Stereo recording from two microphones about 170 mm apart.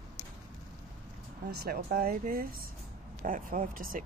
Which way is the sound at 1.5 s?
65° right (ahead or behind).